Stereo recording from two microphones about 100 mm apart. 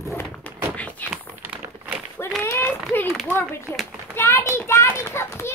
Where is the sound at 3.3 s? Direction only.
25° left (ahead or behind).